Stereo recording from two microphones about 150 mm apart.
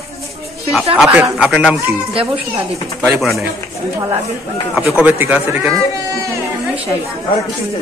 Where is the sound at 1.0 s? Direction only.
5° right (ahead or behind).